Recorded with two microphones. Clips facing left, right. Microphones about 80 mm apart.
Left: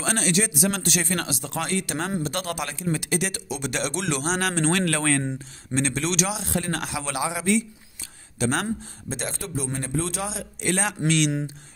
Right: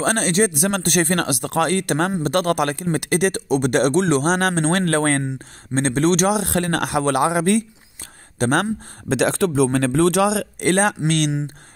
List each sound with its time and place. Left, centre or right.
0.0 s a man's voice: right
9.1 s speech: right